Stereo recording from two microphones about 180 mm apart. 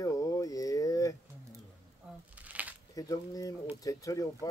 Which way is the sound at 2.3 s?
10° right (ahead or behind).